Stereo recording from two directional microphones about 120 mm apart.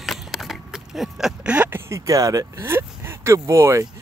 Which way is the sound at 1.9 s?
25° right (ahead or behind).